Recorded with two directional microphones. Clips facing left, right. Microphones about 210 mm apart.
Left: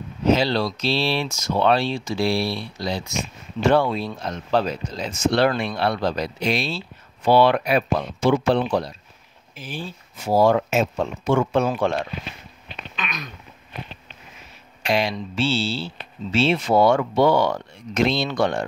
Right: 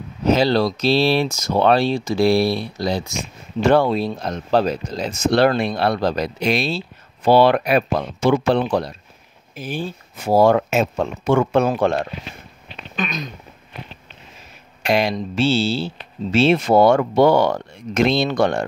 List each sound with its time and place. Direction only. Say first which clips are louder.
0.3 s speech: right 3 dB; 40° right (ahead or behind)
7.5 s speech: right 3 dB; 60° right (ahead or behind)
11.8 s speech: right 4 dB; 45° right (ahead or behind)
14.8 s speech: right 4 dB; 45° right (ahead or behind)